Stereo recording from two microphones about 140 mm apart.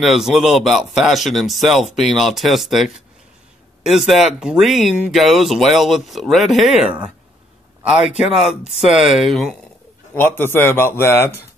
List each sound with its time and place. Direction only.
0.0 s speech: centre (ahead or behind)
8.4 s speech: 5° right (ahead or behind)
10.1 s a man's voice: 15° left (ahead or behind)